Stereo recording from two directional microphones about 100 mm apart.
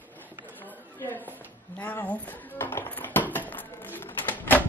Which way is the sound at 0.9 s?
20° left (ahead or behind).